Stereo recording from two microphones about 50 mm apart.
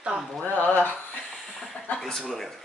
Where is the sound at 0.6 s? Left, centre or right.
Left.